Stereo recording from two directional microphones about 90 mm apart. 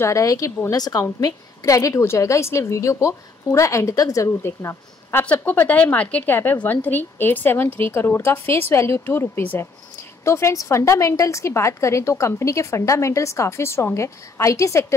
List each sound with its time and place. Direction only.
0.0 s a woman's voice: 35° left (ahead or behind)
5.2 s a woman's voice: 20° left (ahead or behind); by 15.0 s 35° left (ahead or behind)